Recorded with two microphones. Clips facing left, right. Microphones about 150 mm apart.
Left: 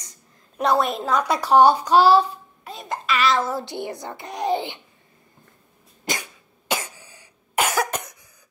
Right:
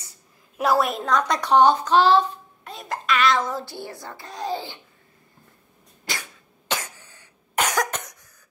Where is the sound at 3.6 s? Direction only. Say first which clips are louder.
Left 5 dB; 20° left (ahead or behind).